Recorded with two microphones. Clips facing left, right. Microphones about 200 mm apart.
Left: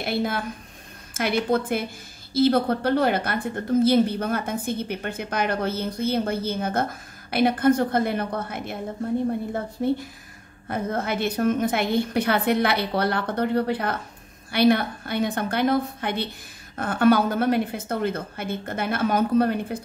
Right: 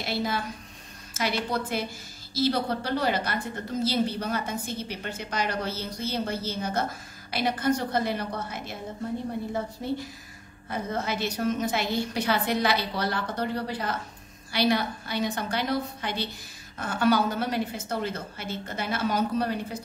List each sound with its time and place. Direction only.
0.0 s a woman's voice: 55° left (ahead or behind)
9.8 s a woman's voice: 55° left (ahead or behind)